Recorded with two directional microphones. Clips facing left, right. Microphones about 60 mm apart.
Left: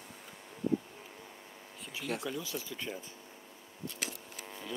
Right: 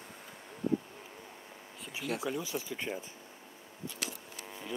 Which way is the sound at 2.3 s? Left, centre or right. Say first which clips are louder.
Right 3 dB; right.